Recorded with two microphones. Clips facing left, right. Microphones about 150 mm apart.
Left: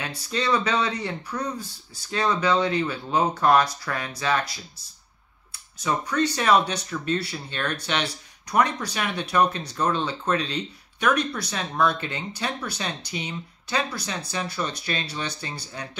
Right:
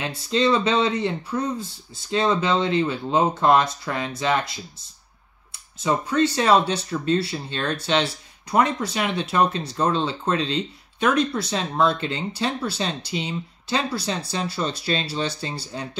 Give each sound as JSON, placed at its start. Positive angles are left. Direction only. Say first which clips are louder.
{"t": 0.0, "sound": "speech", "louder": "right 6 dB", "side_deg": -25}